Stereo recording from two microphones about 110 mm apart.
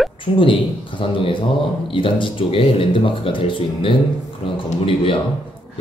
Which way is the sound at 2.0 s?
50° left (ahead or behind).